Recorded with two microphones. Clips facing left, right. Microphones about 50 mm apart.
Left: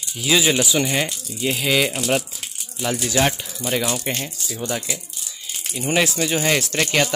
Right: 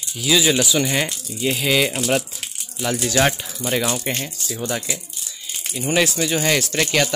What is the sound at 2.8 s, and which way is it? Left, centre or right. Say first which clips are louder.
Speech: right 1 dB; centre.